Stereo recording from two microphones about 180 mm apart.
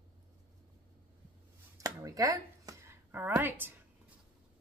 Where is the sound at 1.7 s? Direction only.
20° right (ahead or behind).